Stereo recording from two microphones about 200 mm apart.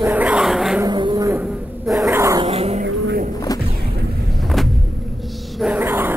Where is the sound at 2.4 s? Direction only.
30° right (ahead or behind).